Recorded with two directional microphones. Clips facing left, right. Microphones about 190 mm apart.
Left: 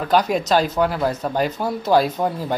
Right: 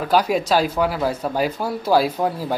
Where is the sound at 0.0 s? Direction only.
5° right (ahead or behind).